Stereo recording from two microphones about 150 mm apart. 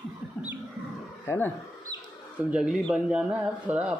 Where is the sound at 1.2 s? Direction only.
15° left (ahead or behind).